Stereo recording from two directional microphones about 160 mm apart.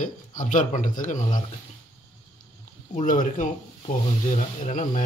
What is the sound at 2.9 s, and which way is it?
Speech, 55° left (ahead or behind).